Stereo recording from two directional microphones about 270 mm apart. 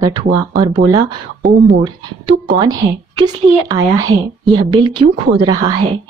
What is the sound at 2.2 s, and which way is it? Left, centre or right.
Speech, centre.